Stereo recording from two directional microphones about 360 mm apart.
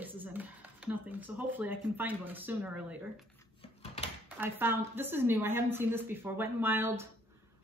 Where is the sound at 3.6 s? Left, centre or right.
Centre.